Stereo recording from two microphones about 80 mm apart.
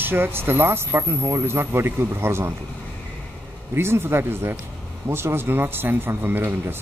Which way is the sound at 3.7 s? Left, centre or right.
Right.